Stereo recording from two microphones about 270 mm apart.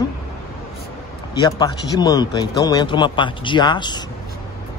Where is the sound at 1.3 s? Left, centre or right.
Centre.